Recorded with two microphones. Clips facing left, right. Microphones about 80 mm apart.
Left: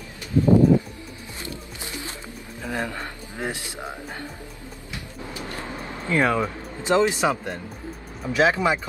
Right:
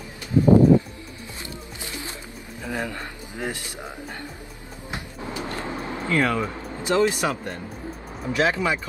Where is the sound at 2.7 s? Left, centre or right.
Centre.